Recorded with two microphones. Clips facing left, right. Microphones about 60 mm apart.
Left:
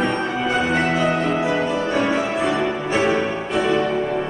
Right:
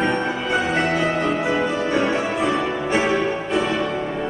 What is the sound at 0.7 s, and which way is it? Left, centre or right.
Music, centre.